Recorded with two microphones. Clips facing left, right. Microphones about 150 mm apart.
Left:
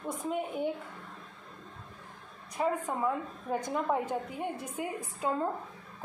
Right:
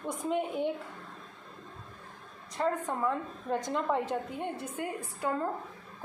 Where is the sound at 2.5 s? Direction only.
10° left (ahead or behind).